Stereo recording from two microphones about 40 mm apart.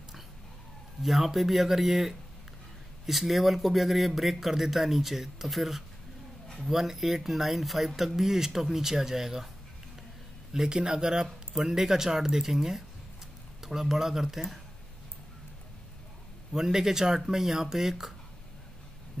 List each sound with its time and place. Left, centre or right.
1.0 s speech: centre
10.5 s speech: centre
16.5 s speech: centre